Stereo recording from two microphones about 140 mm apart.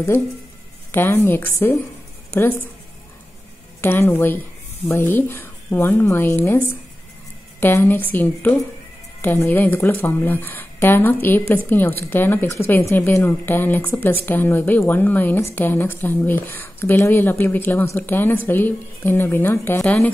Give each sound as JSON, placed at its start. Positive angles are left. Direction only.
{"t": 0.9, "sound": "a woman's voice", "side_deg": 15}
{"t": 3.8, "sound": "a woman's voice", "side_deg": 15}